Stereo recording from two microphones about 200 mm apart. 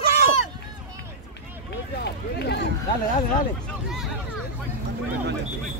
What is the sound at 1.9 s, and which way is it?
Run, 55° left (ahead or behind).